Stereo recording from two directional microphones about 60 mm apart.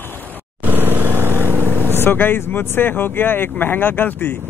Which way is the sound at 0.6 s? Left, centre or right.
Right.